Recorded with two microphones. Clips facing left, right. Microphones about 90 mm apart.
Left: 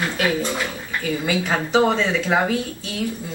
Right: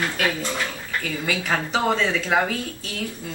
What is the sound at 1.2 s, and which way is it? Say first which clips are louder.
Speech: left 1 dB; 15° left (ahead or behind).